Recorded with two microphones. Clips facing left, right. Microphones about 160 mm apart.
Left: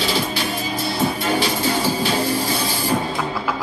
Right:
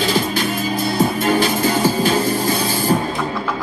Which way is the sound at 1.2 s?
45° right (ahead or behind).